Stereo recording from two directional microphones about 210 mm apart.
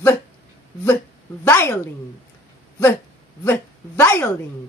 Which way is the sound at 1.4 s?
10° left (ahead or behind).